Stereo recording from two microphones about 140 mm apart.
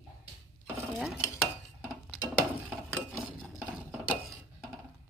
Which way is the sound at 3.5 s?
5° right (ahead or behind).